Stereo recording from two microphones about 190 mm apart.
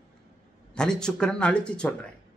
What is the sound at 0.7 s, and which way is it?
Speech, 5° left (ahead or behind).